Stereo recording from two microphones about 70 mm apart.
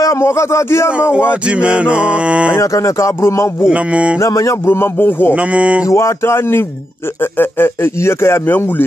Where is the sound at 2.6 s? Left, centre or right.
Left.